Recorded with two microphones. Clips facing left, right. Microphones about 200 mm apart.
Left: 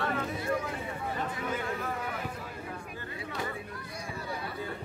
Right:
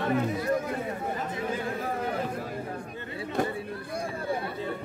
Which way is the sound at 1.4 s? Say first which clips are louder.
Right 4 dB; 35° right (ahead or behind).